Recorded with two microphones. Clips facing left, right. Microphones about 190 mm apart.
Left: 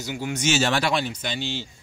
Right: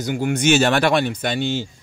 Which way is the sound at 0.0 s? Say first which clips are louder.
Right 7 dB; 50° right (ahead or behind).